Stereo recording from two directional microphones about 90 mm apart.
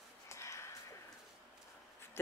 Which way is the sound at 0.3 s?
30° left (ahead or behind).